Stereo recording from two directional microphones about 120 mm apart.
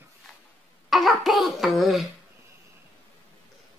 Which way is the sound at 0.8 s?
Centre (ahead or behind).